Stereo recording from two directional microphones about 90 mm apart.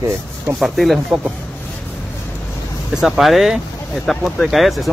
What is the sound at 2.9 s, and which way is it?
Speech, centre (ahead or behind).